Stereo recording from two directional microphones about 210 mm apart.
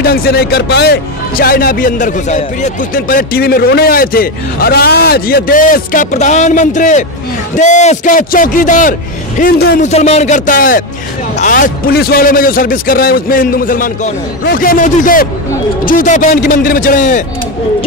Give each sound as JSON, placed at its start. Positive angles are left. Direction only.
{"t": 0.0, "sound": "a man's voice", "side_deg": 45}
{"t": 9.8, "sound": "a man's voice", "side_deg": 30}